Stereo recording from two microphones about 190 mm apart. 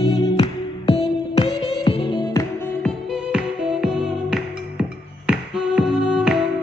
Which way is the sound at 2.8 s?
5° right (ahead or behind).